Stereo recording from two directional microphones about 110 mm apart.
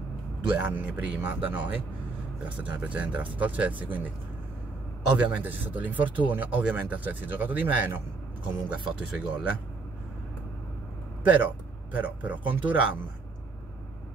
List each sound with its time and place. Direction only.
0.5 s speech: 15° right (ahead or behind)
2.5 s speech: 15° right (ahead or behind)
5.0 s speech: 10° right (ahead or behind)
11.2 s speech: 15° right (ahead or behind)